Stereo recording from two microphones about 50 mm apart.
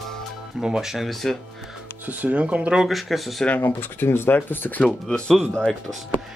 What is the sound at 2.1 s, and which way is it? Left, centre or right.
Speech, right.